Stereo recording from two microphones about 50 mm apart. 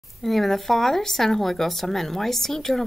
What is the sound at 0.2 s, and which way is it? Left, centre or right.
Speech, centre.